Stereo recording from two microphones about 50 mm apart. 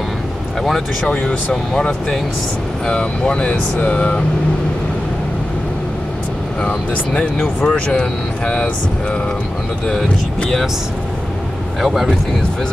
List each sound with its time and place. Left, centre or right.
1.5 s speech: centre
6.6 s speech: left
11.8 s speech: centre